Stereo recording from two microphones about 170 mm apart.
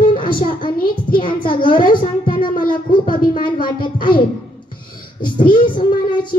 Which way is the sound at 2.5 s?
55° left (ahead or behind).